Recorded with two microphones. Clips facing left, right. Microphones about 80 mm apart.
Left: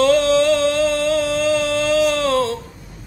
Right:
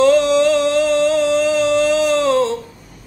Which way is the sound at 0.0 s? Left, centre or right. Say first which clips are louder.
Right 2 dB; right.